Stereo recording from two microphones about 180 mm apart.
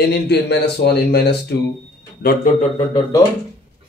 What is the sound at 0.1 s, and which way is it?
A man's voice, 70° left (ahead or behind).